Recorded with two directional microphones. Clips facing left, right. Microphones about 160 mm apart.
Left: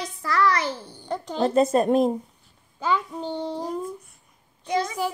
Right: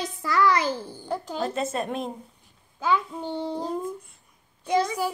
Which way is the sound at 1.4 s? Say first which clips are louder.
Left 11 dB; 40° left (ahead or behind).